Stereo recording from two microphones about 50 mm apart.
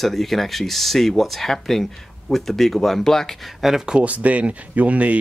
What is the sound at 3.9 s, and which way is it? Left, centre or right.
Speech, right.